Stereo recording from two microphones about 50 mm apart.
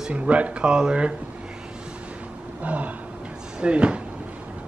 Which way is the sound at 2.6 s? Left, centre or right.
Right.